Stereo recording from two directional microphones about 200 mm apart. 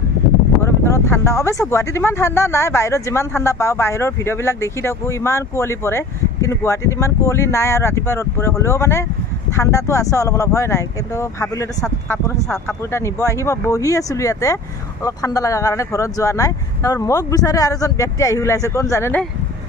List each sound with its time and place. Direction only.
0.6 s speech: 15° left (ahead or behind)